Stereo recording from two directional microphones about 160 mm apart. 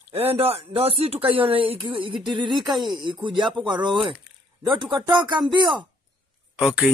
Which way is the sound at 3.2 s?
30° right (ahead or behind).